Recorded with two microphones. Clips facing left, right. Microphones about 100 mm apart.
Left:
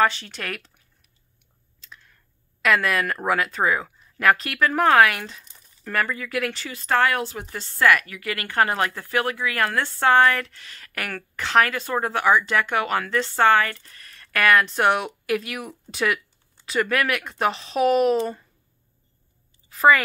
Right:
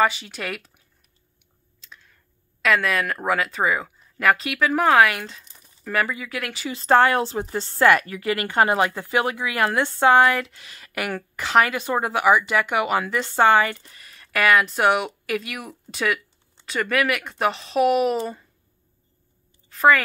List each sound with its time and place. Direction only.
0.0 s speech: 5° right (ahead or behind)
1.8 s a sound: centre (ahead or behind)
2.6 s speech: centre (ahead or behind)
6.7 s a woman's voice: 30° right (ahead or behind); by 18.4 s centre (ahead or behind)
19.7 s speech: centre (ahead or behind)